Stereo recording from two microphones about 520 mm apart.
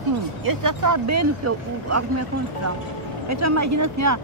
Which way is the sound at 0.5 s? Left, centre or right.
Right.